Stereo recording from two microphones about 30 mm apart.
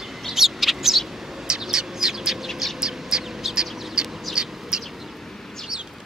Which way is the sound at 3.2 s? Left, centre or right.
Centre.